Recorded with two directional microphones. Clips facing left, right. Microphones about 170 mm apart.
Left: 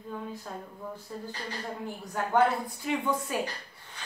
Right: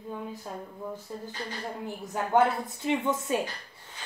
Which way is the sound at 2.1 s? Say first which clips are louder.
Right 1 dB; 20° right (ahead or behind).